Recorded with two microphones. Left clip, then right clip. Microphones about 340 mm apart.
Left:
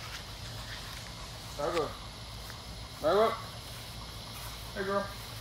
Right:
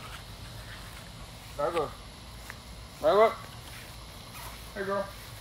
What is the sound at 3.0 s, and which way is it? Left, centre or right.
Speech, centre.